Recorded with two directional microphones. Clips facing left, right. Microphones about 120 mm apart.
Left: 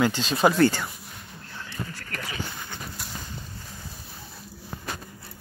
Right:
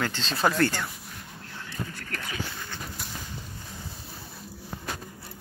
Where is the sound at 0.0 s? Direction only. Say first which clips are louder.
Left 5 dB; 10° left (ahead or behind).